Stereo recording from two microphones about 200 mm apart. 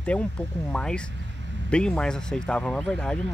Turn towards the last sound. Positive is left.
turn(degrees=5)  # may be behind; listen again after turning